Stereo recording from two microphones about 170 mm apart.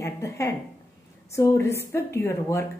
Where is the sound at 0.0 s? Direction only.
15° left (ahead or behind).